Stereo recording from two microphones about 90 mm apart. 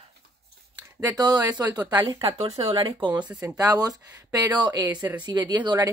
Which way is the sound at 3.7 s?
45° right (ahead or behind).